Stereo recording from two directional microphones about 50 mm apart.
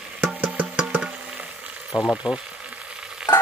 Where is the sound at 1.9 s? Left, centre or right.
Left.